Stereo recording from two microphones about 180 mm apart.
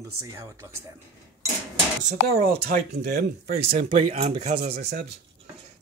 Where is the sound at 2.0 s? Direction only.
40° right (ahead or behind).